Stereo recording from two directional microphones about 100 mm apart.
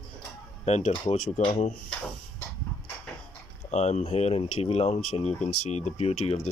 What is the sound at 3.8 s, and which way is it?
Speech, 90° left.